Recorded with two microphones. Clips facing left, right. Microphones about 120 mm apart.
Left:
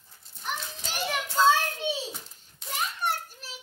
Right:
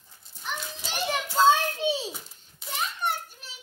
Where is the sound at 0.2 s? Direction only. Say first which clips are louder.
Even; centre (ahead or behind).